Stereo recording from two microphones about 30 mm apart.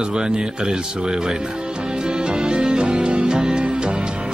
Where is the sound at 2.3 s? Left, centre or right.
Right.